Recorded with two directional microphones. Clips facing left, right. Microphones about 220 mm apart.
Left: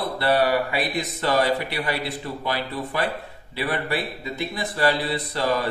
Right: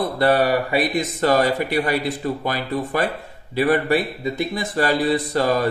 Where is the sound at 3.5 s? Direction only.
45° right (ahead or behind).